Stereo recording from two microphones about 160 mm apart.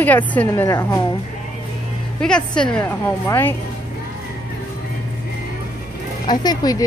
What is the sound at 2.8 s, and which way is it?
Speech, 15° left (ahead or behind).